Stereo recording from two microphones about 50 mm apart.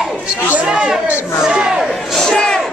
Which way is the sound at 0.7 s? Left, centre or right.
Centre.